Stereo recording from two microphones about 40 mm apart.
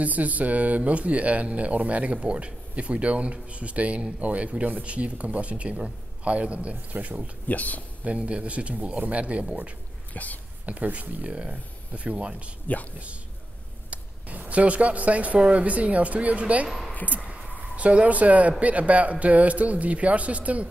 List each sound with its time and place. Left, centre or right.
0.0 s speech: right
7.4 s speech: left
8.0 s speech: right
10.1 s speech: left
10.6 s speech: right
13.8 s speech: right
17.3 s a sound: right
18.6 s speech: right